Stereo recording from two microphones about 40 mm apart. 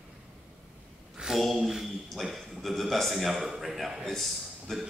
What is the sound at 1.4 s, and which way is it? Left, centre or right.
A man's voice, centre.